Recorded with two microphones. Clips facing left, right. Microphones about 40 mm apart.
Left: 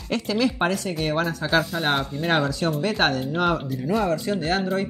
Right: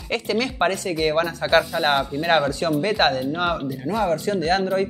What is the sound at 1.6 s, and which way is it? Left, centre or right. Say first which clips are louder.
Speech: right 3 dB; centre.